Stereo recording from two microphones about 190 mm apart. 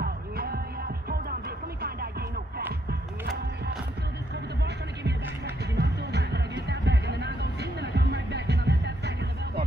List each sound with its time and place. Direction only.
0.0 s music: 55° right (ahead or behind)
2.9 s music: 55° right (ahead or behind)
5.8 s music: 60° right (ahead or behind)